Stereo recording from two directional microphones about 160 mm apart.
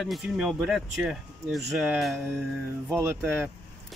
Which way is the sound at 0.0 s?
5° right (ahead or behind).